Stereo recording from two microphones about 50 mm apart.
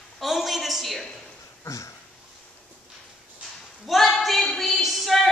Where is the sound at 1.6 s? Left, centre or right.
Left.